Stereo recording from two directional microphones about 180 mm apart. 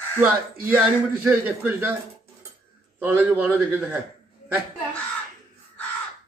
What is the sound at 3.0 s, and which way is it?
A man's voice, 10° right (ahead or behind).